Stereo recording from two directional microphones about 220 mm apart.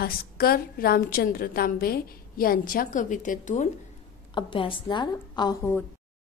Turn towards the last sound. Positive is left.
turn(degrees=20)  # may be behind; listen again after turning